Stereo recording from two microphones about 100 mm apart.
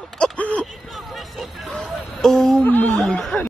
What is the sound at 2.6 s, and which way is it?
Speech, 20° left (ahead or behind).